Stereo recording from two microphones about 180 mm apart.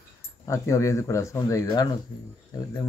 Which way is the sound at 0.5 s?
15° left (ahead or behind).